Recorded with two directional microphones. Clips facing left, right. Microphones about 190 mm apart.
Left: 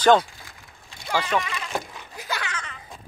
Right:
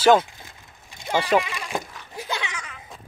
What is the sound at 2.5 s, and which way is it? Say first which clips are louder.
Baby laughter: left 1 dB; 5° right (ahead or behind).